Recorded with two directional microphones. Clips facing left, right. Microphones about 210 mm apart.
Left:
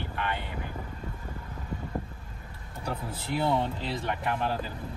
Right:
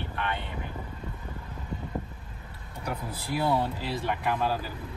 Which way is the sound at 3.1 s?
25° left (ahead or behind).